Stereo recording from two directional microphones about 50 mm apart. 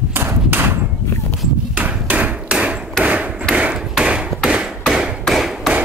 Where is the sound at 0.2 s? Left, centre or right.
Right.